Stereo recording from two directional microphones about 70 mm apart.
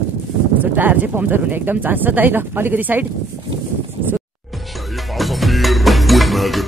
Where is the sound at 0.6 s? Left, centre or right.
Right.